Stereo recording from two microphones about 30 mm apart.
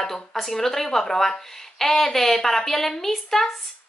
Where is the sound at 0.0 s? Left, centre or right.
Centre.